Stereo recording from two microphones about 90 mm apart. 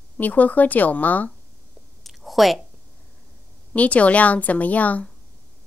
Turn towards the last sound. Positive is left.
turn(degrees=15)  # may be behind; listen again after turning